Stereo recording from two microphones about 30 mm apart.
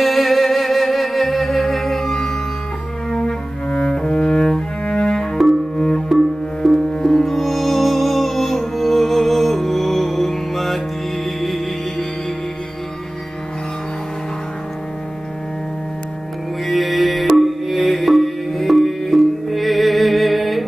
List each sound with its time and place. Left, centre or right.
0.0 s music: centre
3.2 s cello: left
5.1 s cello: left
5.8 s music: left; by 10.8 s centre
16.6 s music: centre